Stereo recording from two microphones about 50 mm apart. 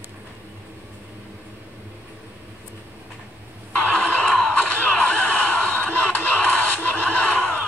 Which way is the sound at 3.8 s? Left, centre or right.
Left.